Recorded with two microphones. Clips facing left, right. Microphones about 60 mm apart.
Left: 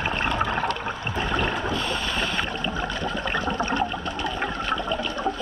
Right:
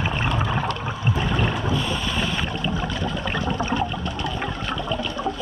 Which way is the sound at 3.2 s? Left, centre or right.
Centre.